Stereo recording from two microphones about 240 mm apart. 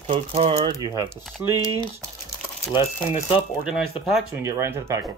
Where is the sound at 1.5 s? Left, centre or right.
Centre.